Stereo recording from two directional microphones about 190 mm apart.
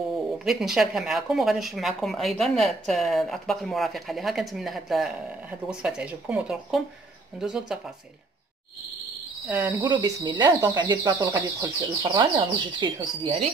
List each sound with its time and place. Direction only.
0.1 s speech: centre (ahead or behind)
9.5 s speech: 15° right (ahead or behind)